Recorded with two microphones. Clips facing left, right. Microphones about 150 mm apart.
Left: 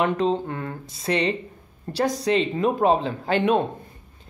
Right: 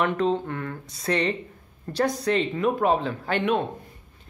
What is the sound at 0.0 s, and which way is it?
Speech, 25° left (ahead or behind).